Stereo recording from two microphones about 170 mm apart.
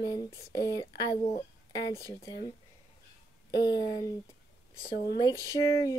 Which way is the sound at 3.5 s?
25° left (ahead or behind).